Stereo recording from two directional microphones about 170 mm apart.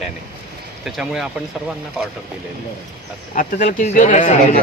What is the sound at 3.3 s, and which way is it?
Speech, 50° left (ahead or behind).